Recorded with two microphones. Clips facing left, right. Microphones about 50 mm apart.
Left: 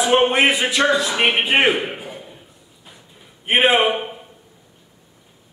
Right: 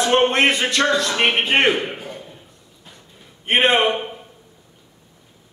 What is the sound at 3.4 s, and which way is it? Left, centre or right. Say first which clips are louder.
Speech: left 1 dB; centre.